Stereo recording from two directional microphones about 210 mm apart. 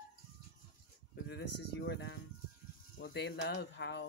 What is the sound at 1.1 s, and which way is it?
Speech, 55° left (ahead or behind).